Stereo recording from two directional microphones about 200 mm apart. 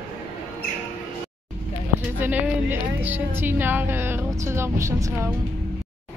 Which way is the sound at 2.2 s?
10° right (ahead or behind).